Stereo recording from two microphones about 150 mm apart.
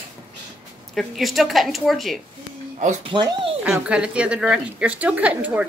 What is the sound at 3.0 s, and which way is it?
Speech, 35° right (ahead or behind).